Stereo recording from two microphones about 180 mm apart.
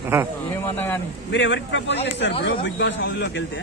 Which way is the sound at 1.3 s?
90° left.